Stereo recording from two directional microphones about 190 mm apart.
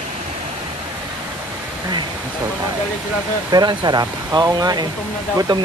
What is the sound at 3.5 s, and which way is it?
Speech, 20° right (ahead or behind).